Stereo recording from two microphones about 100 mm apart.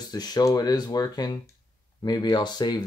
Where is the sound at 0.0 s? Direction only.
40° left (ahead or behind).